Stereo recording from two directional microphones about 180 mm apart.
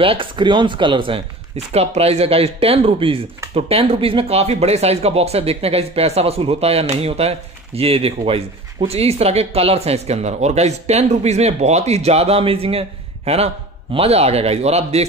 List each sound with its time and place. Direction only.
0.0 s speech: 30° right (ahead or behind)